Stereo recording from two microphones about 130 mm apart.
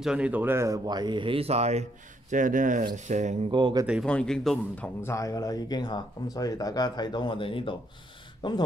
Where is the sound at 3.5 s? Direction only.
35° right (ahead or behind).